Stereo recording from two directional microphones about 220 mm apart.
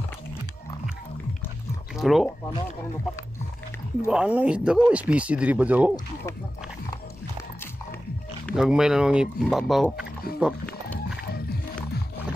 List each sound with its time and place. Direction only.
2.0 s speech: centre (ahead or behind)
4.1 s speech: 5° right (ahead or behind)
8.5 s speech: centre (ahead or behind)
11.3 s music: 45° left (ahead or behind)